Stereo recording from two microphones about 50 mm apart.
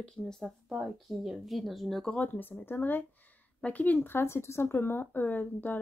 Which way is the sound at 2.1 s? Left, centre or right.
Left.